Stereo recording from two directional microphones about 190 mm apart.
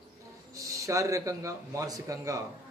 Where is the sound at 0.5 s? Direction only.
15° right (ahead or behind).